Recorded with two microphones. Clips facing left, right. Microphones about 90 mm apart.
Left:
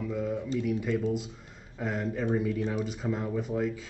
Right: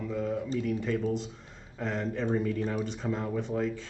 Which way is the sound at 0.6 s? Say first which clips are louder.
Left 3 dB; 5° left (ahead or behind).